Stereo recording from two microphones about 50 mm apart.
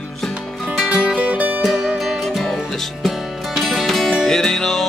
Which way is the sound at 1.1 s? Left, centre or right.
Right.